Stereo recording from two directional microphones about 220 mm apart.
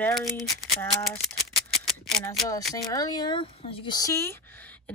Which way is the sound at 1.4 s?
Centre (ahead or behind).